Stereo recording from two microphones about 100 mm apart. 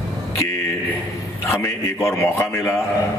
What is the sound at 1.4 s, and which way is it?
A man's voice, 25° left (ahead or behind).